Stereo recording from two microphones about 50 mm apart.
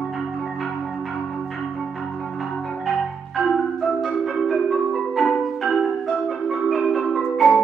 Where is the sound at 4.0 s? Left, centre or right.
Centre.